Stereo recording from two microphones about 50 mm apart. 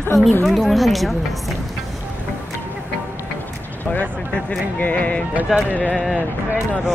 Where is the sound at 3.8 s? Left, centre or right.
Left.